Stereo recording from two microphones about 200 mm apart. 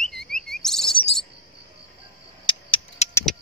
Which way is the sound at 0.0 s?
Centre (ahead or behind).